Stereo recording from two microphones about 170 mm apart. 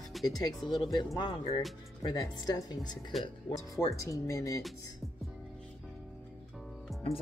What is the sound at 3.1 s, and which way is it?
Speech, centre (ahead or behind).